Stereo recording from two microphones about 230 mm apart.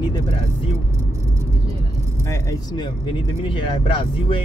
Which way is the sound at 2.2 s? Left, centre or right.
Centre.